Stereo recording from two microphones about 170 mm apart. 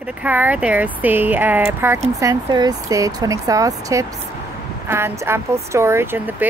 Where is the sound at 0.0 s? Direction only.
10° right (ahead or behind).